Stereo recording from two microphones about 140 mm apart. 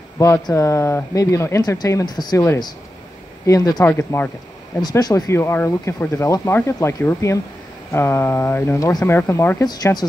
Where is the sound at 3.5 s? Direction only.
25° left (ahead or behind).